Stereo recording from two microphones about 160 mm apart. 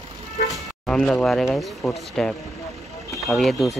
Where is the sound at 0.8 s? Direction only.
5° left (ahead or behind).